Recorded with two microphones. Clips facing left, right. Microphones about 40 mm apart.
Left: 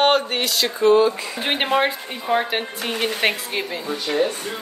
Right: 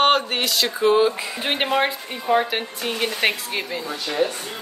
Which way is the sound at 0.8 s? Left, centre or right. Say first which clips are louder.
Left 3 dB; centre.